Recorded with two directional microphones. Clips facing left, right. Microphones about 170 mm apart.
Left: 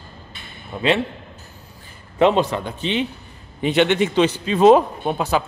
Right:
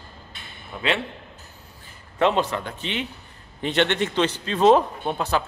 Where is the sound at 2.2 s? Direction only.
15° left (ahead or behind).